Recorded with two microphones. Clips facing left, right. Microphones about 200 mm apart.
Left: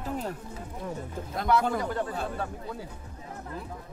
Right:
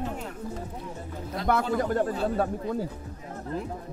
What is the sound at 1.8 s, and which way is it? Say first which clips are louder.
Speech: right 5 dB; 50° right (ahead or behind).